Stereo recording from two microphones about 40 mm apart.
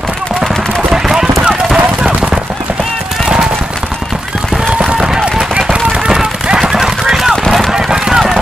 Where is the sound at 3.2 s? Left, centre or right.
Centre.